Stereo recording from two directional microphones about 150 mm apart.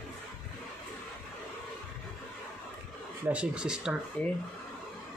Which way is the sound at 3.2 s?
10° right (ahead or behind).